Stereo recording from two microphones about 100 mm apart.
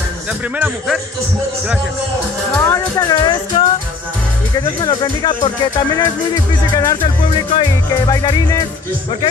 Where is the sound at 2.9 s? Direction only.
45° left (ahead or behind).